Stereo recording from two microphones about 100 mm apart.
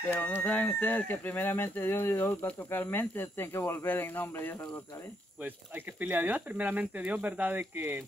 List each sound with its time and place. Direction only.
0.1 s speech: 15° left (ahead or behind)
5.9 s speech: 20° right (ahead or behind)